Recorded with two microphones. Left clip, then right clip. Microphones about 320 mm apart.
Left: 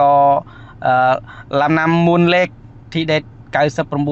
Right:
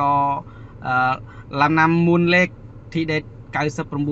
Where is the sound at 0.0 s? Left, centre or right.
Left.